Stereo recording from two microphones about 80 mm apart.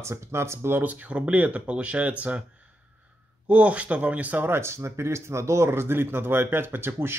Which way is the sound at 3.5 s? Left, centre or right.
Centre.